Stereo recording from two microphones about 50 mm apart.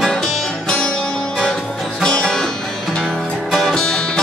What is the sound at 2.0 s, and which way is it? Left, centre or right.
Music, centre.